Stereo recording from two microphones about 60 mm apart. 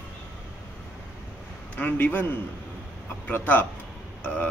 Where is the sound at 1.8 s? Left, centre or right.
Left.